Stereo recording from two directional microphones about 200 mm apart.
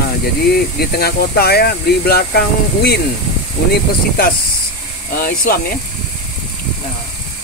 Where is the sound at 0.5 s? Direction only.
50° left (ahead or behind).